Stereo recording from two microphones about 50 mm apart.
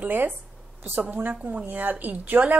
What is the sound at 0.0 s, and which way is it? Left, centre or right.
Speech, right.